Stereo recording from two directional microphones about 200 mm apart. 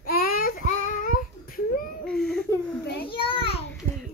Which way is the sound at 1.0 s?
45° left (ahead or behind).